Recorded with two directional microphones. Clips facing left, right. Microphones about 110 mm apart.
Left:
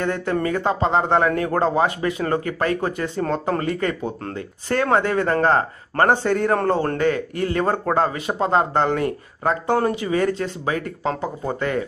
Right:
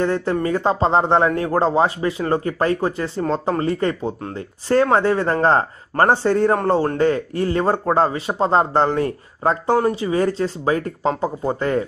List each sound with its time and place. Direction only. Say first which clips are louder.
0.0 s speech: right 2 dB; 30° right (ahead or behind)